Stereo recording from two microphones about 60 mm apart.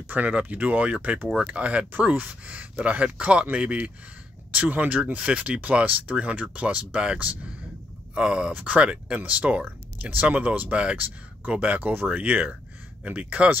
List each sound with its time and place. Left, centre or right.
0.1 s speech: right